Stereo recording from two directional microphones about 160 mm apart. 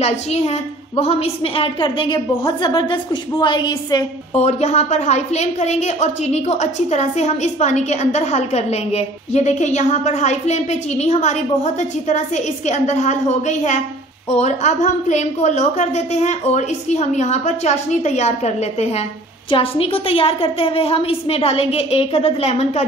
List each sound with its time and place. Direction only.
0.0 s a woman's voice: 40° left (ahead or behind)
4.4 s a woman's voice: 40° left (ahead or behind)